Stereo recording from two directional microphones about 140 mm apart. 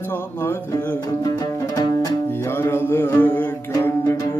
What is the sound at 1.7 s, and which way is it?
Music, 30° left (ahead or behind).